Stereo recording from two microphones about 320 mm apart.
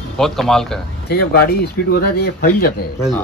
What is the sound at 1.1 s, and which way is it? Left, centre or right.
Speech, left.